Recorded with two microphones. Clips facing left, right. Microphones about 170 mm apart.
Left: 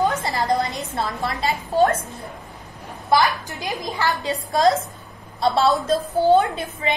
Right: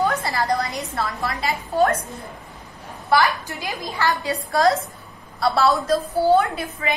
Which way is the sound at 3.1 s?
20° left (ahead or behind).